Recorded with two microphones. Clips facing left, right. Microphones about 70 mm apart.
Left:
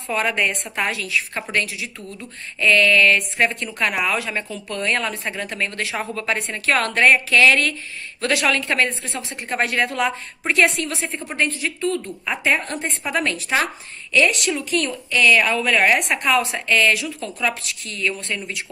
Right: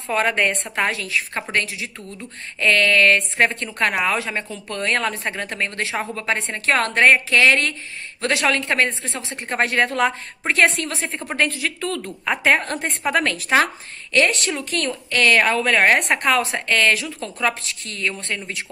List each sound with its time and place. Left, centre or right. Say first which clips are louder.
0.1 s a woman's voice: right 2 dB; right
3.2 s a woman's voice: right 1 dB; right
11.3 s a woman's voice: right 1 dB; right
12.3 s a woman's voice: right 3 dB; right